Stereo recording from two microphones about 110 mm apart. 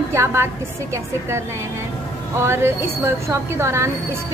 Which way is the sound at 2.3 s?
20° right (ahead or behind).